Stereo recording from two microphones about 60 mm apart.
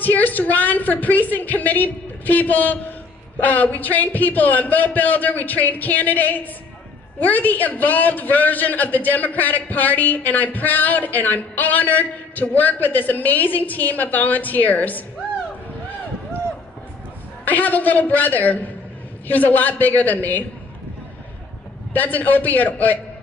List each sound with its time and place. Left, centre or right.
0.0 s a man's voice: left
17.5 s a man's voice: left
21.9 s a man's voice: left